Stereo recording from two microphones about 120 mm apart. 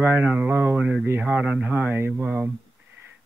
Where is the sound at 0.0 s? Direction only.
15° right (ahead or behind).